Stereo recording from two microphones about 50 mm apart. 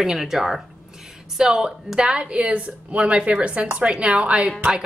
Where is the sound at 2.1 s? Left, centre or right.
Right.